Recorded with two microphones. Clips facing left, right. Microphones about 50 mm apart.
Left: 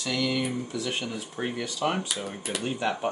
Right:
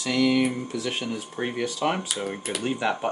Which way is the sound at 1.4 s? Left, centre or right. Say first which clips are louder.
Right 2 dB; right.